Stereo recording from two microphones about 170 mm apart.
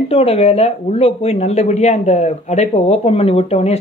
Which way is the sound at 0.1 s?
35° left (ahead or behind).